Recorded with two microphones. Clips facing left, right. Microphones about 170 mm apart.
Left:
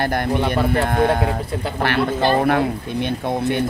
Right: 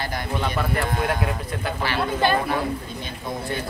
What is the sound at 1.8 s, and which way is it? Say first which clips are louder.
Speech: left 4 dB; 60° left (ahead or behind).